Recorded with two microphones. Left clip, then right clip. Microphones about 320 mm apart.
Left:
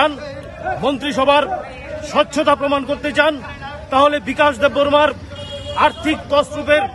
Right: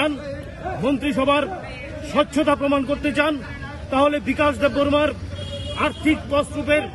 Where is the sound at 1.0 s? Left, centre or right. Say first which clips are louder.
Left 6 dB; centre.